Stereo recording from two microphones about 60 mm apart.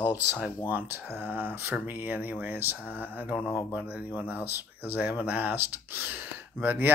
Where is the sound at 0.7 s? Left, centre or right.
Right.